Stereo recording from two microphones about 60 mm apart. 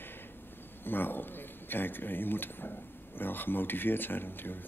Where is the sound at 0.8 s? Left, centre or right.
Left.